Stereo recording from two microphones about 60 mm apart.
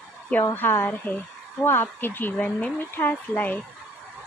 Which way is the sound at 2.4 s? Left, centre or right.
Left.